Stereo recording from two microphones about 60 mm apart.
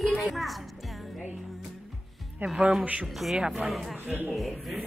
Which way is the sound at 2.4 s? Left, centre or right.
Right.